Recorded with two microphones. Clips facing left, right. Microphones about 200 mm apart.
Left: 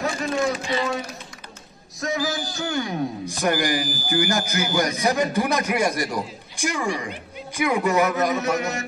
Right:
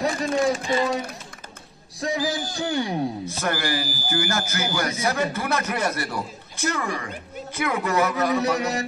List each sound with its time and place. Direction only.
0.0 s a sound: 35° right (ahead or behind)
2.0 s music: 30° right (ahead or behind)
2.5 s a man's voice: 30° right (ahead or behind)
3.3 s a man's voice: 15° left (ahead or behind)
8.4 s a man's voice: 35° right (ahead or behind)